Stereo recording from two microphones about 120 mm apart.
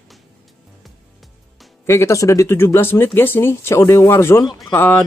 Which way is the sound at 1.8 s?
25° left (ahead or behind).